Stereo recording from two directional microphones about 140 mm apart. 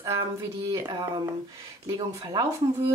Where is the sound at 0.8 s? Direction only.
30° right (ahead or behind).